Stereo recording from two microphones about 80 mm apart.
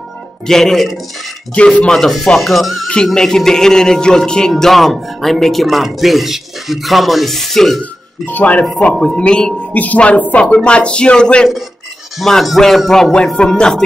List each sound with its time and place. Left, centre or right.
0.5 s speech: centre
1.5 s speech: centre
8.3 s a woman's voice: left
12.2 s speech: centre